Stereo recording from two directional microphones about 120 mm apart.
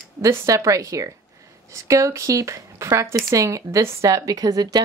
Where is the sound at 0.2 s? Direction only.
25° right (ahead or behind).